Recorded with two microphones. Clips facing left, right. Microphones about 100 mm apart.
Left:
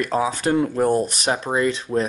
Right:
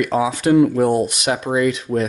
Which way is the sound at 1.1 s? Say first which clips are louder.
Right 2 dB; 35° left (ahead or behind).